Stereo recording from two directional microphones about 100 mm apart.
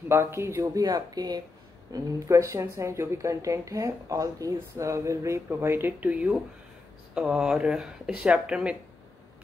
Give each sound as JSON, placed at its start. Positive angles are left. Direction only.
{"t": 0.1, "sound": "speech", "side_deg": -25}
{"t": 0.8, "sound": "a woman's voice", "side_deg": -40}
{"t": 1.9, "sound": "a woman's voice", "side_deg": -30}